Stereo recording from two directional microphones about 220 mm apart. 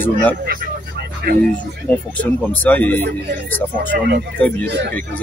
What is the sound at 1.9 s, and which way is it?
Speech, 5° left (ahead or behind).